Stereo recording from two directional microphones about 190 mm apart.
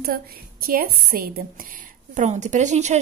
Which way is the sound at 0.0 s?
55° right (ahead or behind).